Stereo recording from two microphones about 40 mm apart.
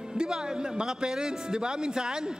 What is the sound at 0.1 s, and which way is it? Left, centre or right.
A man's voice, centre.